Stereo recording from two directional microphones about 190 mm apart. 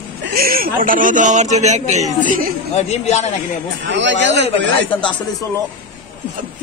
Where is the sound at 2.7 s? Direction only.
35° left (ahead or behind).